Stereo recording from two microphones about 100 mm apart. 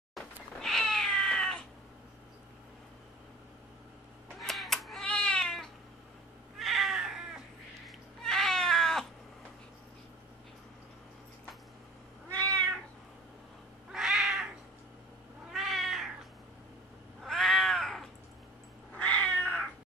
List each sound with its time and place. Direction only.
0.1 s cat: 5° left (ahead or behind)
4.4 s a sound: centre (ahead or behind)
5.0 s cat: 10° left (ahead or behind)
12.4 s cat: 15° left (ahead or behind)
13.9 s cat: 5° right (ahead or behind)
15.5 s cat: centre (ahead or behind)
17.2 s cat: centre (ahead or behind)